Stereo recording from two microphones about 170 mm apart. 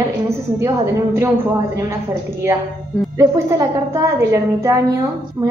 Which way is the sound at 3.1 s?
15° right (ahead or behind).